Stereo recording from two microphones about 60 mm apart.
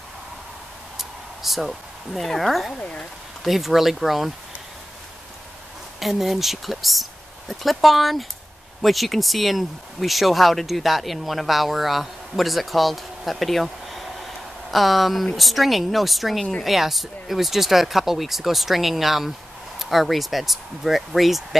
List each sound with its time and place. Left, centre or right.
0.9 s a sound: centre
2.8 s speech: centre
3.4 s speech: centre
5.9 s speech: centre